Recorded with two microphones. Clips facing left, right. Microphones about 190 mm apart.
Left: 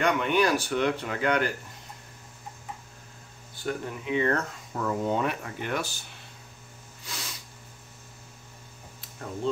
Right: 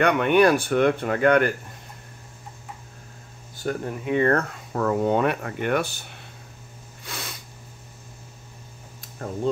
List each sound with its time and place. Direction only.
0.0 s speech: 60° right (ahead or behind)
3.6 s speech: 45° right (ahead or behind)
7.1 s snort: 60° right (ahead or behind)